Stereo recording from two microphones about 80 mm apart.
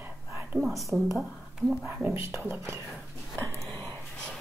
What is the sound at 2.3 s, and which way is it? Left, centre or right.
Speech, right.